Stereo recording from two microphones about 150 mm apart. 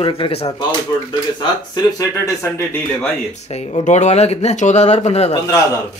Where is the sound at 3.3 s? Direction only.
45° left (ahead or behind).